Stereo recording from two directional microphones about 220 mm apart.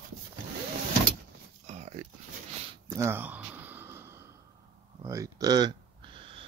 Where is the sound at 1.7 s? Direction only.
30° right (ahead or behind).